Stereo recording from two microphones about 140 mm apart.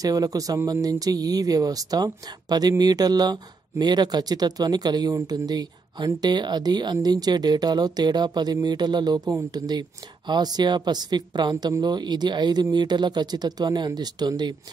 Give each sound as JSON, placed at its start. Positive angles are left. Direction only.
{"t": 0.0, "sound": "speech", "side_deg": -25}